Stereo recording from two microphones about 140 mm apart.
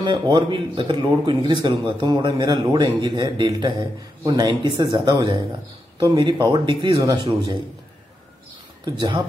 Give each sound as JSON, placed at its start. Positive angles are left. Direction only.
{"t": 0.0, "sound": "speech", "side_deg": -35}
{"t": 7.0, "sound": "speech", "side_deg": -25}
{"t": 8.8, "sound": "speech", "side_deg": -30}